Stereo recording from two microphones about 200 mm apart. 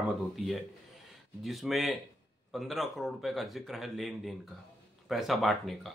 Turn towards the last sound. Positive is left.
turn(degrees=0)  # may be behind; listen again after turning